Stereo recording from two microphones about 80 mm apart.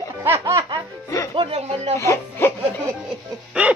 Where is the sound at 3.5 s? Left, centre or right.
Centre.